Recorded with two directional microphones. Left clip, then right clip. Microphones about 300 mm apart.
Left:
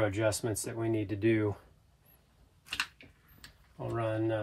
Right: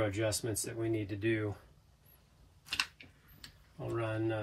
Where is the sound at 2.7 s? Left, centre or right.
Centre.